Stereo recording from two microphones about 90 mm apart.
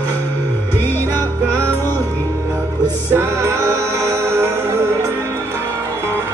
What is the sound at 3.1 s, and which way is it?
Music, 30° right (ahead or behind).